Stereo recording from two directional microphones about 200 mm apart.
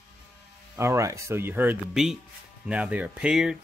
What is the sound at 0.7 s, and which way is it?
Speech, 15° right (ahead or behind).